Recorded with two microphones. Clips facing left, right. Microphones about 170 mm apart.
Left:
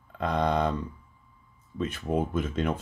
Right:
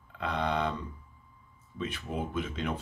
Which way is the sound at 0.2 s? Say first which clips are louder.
Left 5 dB; 40° left (ahead or behind).